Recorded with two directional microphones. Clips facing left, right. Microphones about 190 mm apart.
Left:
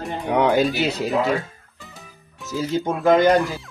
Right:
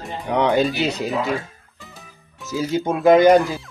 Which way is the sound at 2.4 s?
10° right (ahead or behind).